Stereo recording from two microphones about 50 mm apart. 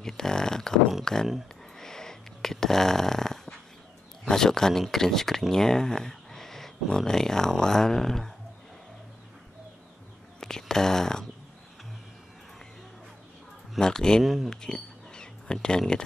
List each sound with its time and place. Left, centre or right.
0.0 s speech: centre
1.8 s snoring: centre
4.3 s speech: centre
10.4 s speech: centre
13.7 s speech: centre
14.2 s speech: centre
14.5 s a sound: centre